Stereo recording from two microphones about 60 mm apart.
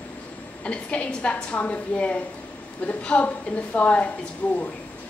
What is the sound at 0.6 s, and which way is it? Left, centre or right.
A woman's voice, centre.